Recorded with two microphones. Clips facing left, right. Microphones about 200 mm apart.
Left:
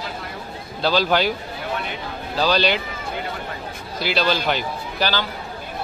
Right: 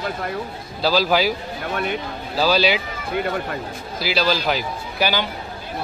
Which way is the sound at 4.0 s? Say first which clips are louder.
Even; 5° right (ahead or behind).